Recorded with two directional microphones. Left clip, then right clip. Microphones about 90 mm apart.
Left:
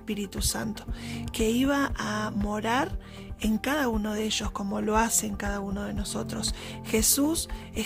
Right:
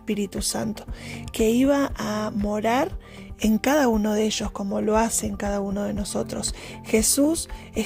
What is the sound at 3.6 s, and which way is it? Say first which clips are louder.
Speech: right 8 dB; 65° right (ahead or behind).